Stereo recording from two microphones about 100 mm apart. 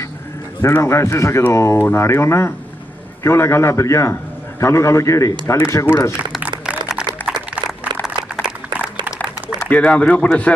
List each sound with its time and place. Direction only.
0.6 s a man's voice: 30° left (ahead or behind)
8.4 s a sound: 10° right (ahead or behind)
9.7 s speech: 15° left (ahead or behind)